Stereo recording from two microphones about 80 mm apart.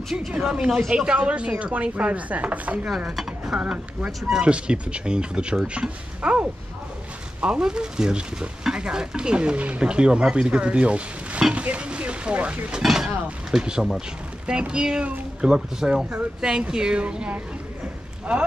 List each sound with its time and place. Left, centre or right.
0.4 s speech: centre
12.8 s speech: centre